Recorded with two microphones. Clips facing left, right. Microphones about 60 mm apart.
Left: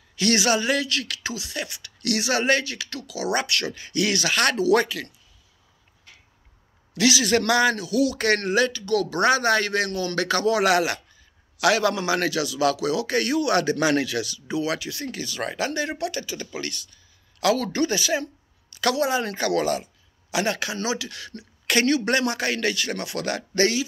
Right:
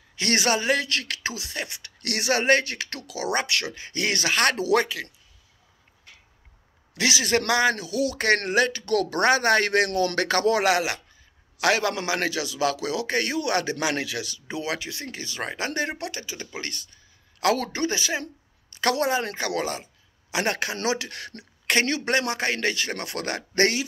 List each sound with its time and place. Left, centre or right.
0.1 s speech: right
6.9 s a man's voice: right
8.8 s speech: right
10.1 s speech: right
10.6 s a man's voice: right
16.1 s a man's voice: right
16.7 s a sound: right
17.7 s a man's voice: right
19.3 s speech: right
20.4 s speech: right
21.6 s a man's voice: right
22.9 s speech: right